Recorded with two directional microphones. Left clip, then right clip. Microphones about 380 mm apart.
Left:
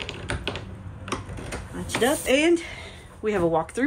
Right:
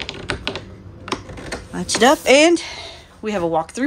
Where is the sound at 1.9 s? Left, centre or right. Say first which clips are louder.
Right 9 dB; centre.